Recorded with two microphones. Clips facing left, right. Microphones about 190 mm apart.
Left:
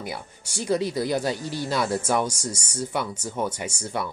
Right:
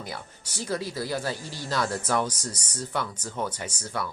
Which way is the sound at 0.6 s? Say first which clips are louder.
Left 6 dB; 20° left (ahead or behind).